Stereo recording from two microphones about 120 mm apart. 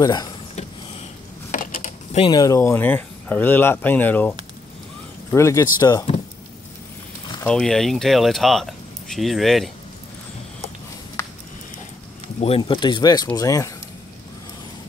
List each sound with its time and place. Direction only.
0.0 s speech: 35° left (ahead or behind)
1.5 s mechanisms: 90° left
2.2 s speech: 35° left (ahead or behind)
2.8 s speech: 15° left (ahead or behind)
5.3 s speech: 25° left (ahead or behind)
7.4 s speech: 5° left (ahead or behind)
11.2 s a sound: 25° left (ahead or behind)
12.4 s speech: 50° left (ahead or behind)
12.7 s speech: 35° left (ahead or behind)